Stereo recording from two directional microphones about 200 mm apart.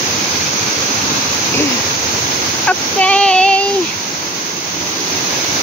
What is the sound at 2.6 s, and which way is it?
Child singing, 5° left (ahead or behind).